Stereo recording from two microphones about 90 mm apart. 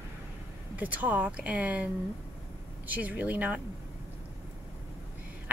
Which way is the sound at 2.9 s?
15° right (ahead or behind).